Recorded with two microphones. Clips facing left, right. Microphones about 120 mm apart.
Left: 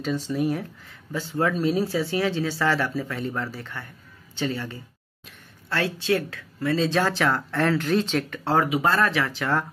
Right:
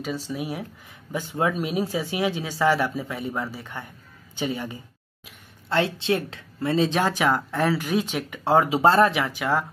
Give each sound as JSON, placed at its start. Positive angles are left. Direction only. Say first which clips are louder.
{"t": 0.3, "sound": "speech", "louder": "left 5 dB", "side_deg": -10}
{"t": 8.6, "sound": "speech", "louder": "right 4 dB", "side_deg": -30}